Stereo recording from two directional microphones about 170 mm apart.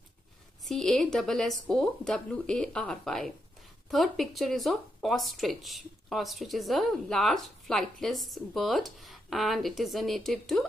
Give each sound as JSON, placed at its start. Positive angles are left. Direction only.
{"t": 0.7, "sound": "speech", "side_deg": 0}